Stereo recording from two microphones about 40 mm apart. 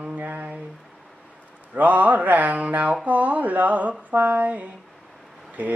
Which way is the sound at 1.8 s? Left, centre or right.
Right.